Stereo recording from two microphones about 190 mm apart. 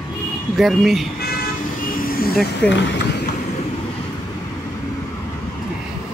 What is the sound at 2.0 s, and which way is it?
Speech, 50° left (ahead or behind).